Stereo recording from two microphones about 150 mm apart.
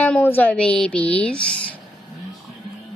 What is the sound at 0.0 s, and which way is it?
Speech, 10° left (ahead or behind).